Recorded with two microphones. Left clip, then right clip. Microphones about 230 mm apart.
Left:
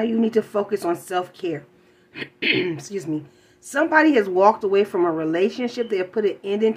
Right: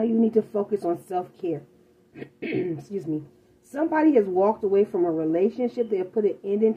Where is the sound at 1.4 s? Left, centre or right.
Left.